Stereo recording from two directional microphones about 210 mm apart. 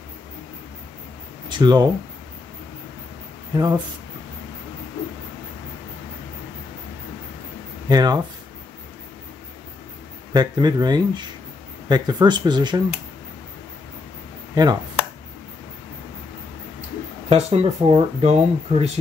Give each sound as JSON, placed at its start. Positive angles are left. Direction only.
{"t": 1.5, "sound": "speech", "side_deg": -20}
{"t": 3.5, "sound": "speech", "side_deg": -20}
{"t": 7.9, "sound": "speech", "side_deg": -20}
{"t": 10.3, "sound": "speech", "side_deg": -20}
{"t": 14.5, "sound": "speech", "side_deg": -20}
{"t": 17.3, "sound": "speech", "side_deg": -30}